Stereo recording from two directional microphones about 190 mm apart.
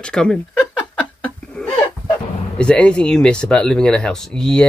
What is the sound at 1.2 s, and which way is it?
Chuckle, 5° left (ahead or behind).